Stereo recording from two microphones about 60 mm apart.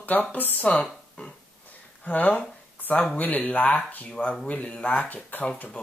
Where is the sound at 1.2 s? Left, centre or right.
Left.